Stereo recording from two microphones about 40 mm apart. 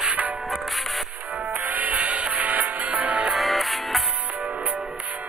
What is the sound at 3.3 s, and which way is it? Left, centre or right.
Music, centre.